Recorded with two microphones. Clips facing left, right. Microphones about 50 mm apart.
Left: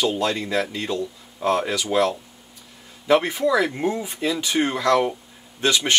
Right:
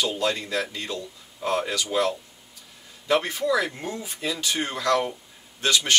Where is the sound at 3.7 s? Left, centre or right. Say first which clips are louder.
Left 8 dB; centre.